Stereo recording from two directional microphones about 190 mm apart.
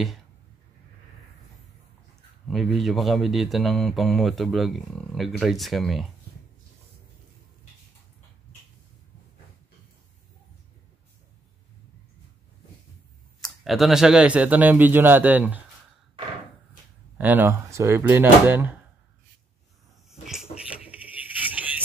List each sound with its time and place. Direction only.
2.4 s speech: centre (ahead or behind)
13.4 s speech: centre (ahead or behind)
17.2 s speech: 10° right (ahead or behind)
20.1 s a sound: centre (ahead or behind)